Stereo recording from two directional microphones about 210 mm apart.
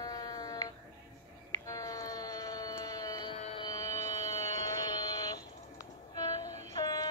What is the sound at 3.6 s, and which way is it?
Music, 15° left (ahead or behind).